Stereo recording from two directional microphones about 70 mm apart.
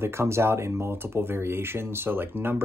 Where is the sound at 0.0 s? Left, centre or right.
Right.